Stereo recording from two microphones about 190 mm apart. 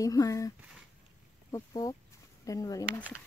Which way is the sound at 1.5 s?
20° left (ahead or behind).